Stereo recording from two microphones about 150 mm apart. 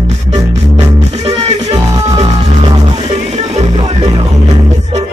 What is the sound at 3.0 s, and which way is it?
Music, 45° right (ahead or behind).